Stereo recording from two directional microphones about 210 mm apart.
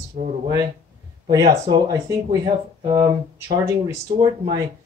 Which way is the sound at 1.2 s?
15° right (ahead or behind).